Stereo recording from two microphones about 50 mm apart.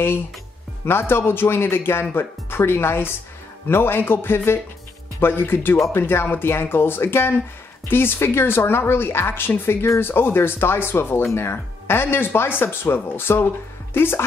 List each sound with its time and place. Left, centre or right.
0.8 s speech: left